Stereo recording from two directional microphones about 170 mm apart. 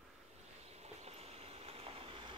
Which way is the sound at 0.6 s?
40° right (ahead or behind).